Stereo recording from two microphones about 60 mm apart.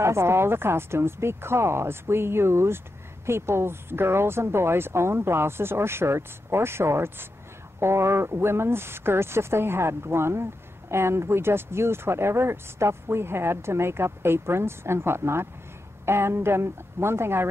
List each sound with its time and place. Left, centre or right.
0.0 s a woman's voice: right